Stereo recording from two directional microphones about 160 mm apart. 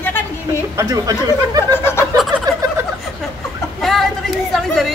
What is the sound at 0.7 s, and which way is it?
Speech, 20° right (ahead or behind).